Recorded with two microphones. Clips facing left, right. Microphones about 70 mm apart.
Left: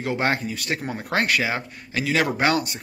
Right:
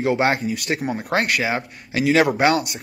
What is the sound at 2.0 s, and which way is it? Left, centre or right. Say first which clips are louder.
Speech: right 6 dB; centre.